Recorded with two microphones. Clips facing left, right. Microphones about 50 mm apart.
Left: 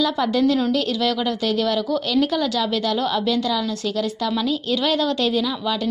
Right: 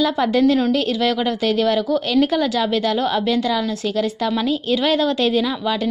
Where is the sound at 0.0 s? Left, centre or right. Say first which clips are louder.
Right 3 dB; right.